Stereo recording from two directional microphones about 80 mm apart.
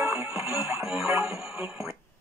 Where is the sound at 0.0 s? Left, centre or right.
Right.